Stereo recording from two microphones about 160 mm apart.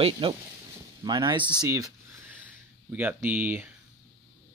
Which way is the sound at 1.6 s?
15° right (ahead or behind).